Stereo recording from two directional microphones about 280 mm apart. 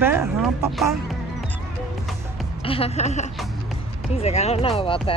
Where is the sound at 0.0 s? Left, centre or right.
Centre.